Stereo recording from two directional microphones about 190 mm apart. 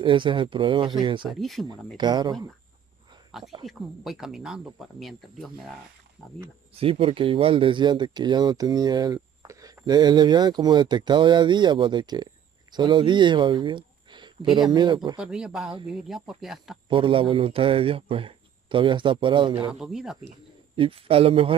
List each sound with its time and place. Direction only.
0.0 s speech: 25° right (ahead or behind)
1.3 s speech: centre (ahead or behind)
2.0 s speech: 20° right (ahead or behind)
3.3 s a sound: centre (ahead or behind)
3.6 s speech: centre (ahead or behind)
6.7 s speech: 30° right (ahead or behind)
15.1 s speech: 5° right (ahead or behind)
16.9 s speech: 25° right (ahead or behind)
19.7 s speech: 5° right (ahead or behind)
20.2 s speech: 30° right (ahead or behind)